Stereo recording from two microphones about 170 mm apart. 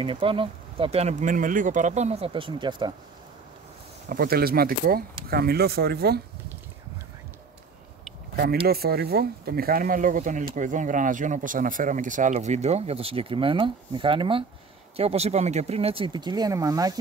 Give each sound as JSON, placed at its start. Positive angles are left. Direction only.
{"t": 0.0, "sound": "speech", "side_deg": -30}
{"t": 4.1, "sound": "speech", "side_deg": -60}
{"t": 8.6, "sound": "speech", "side_deg": -65}